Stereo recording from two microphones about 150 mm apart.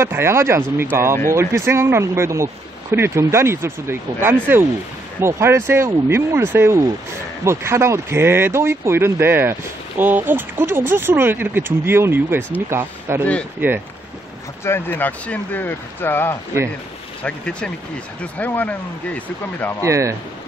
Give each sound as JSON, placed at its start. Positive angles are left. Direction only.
{"t": 0.0, "sound": "speech", "side_deg": -15}
{"t": 14.6, "sound": "speech", "side_deg": 15}
{"t": 19.8, "sound": "speech", "side_deg": -20}